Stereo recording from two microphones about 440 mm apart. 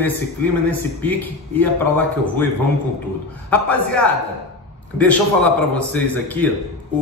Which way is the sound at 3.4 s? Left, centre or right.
Centre.